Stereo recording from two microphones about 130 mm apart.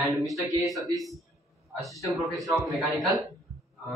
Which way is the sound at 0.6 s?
Centre (ahead or behind).